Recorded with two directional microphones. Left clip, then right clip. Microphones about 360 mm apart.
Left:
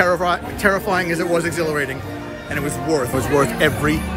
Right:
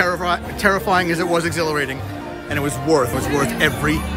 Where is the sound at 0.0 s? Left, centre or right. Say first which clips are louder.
Left 2 dB; centre.